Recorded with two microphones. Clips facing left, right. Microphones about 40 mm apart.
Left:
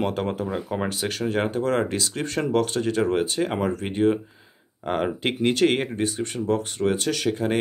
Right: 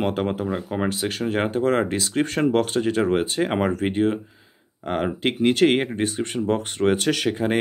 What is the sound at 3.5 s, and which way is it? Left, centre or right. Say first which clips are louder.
Speech: right 3 dB; right.